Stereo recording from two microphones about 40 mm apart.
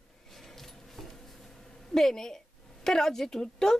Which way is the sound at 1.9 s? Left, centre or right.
Centre.